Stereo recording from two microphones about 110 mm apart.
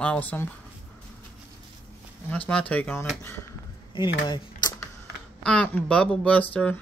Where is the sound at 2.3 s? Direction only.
15° left (ahead or behind).